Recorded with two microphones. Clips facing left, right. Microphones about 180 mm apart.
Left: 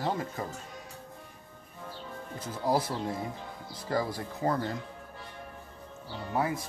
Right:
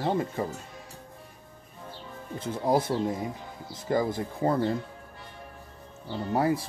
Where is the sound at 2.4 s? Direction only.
25° right (ahead or behind).